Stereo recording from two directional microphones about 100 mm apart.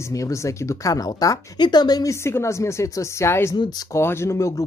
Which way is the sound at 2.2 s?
30° left (ahead or behind).